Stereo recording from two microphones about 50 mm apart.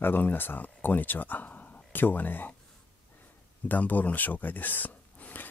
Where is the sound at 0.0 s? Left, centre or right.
Left.